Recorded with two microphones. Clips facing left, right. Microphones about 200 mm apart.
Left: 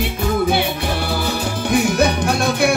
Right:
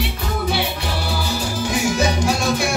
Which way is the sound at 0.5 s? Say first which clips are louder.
Left 4 dB; 55° left (ahead or behind).